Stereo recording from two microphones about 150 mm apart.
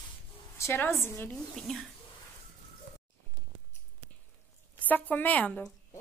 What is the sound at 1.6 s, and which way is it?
Speech, centre (ahead or behind).